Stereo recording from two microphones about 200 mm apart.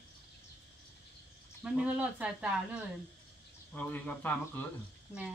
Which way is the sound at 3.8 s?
10° left (ahead or behind).